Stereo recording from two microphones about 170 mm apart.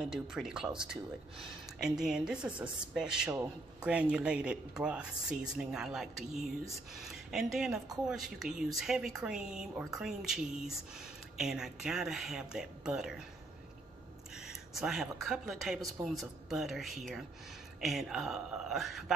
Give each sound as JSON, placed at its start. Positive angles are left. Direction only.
{"t": 0.1, "sound": "speech", "side_deg": -5}
{"t": 1.8, "sound": "speech", "side_deg": -5}
{"t": 14.5, "sound": "speech", "side_deg": 0}